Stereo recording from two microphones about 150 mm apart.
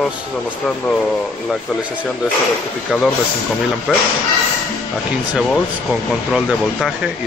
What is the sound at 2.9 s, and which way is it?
Speech, 5° right (ahead or behind).